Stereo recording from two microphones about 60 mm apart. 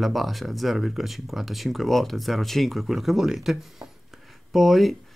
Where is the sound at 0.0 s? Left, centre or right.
Centre.